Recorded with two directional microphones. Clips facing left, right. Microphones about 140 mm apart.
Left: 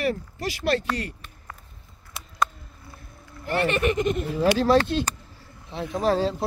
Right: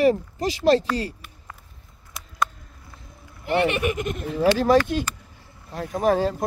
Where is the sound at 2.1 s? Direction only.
Centre (ahead or behind).